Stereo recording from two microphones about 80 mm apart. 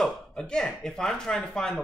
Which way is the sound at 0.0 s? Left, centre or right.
Centre.